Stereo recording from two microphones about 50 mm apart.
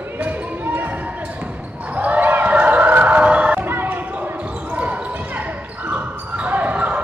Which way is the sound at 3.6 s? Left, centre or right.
Right.